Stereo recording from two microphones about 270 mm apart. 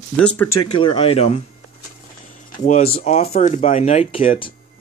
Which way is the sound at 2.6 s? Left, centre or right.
Left.